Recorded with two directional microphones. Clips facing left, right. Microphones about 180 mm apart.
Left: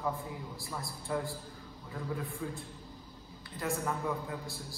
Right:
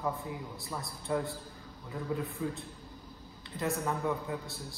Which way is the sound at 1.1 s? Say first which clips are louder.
Right 3 dB; 20° right (ahead or behind).